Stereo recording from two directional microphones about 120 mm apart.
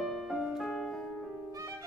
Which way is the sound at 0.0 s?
Centre (ahead or behind).